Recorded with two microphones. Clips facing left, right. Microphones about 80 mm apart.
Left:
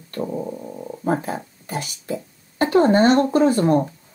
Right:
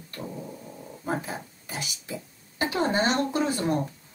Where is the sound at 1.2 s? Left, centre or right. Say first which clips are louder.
Left 8 dB; left.